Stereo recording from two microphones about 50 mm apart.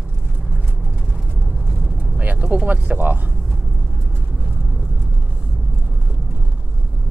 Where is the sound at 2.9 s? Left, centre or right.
Centre.